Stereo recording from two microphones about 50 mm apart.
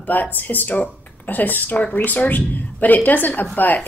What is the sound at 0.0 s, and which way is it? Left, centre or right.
Speech, left.